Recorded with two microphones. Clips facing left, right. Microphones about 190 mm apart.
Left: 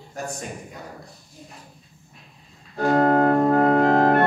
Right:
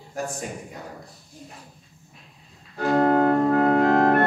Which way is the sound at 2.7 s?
35° left (ahead or behind).